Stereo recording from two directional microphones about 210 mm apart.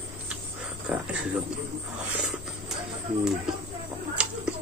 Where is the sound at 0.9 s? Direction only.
5° right (ahead or behind).